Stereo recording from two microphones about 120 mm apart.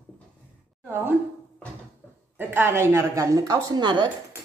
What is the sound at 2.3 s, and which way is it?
A woman's voice, 20° right (ahead or behind).